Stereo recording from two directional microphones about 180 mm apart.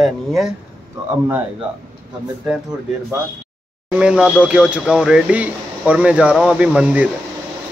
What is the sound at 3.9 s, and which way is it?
Speech, 5° right (ahead or behind).